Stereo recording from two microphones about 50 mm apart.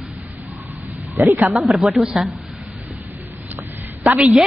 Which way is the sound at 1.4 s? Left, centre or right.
Centre.